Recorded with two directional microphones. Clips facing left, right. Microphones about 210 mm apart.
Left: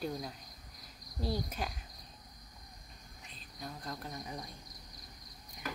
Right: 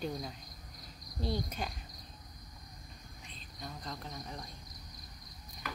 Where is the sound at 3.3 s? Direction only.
5° left (ahead or behind).